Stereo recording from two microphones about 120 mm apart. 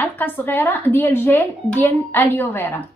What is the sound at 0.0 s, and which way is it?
Speech, 15° left (ahead or behind).